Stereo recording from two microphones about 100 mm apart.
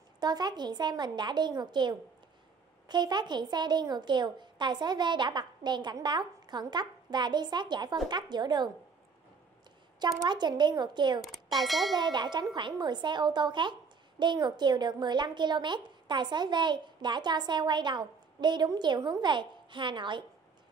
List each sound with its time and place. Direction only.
0.2 s a child's voice: 45° right (ahead or behind)
9.9 s a child's voice: 45° right (ahead or behind)
11.1 s speech: centre (ahead or behind)
11.9 s a child's voice: 50° right (ahead or behind)